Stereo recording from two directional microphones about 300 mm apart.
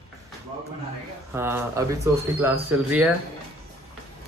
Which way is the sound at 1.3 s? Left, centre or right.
Centre.